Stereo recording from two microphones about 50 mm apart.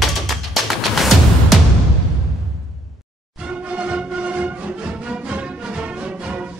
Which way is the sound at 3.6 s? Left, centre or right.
Right.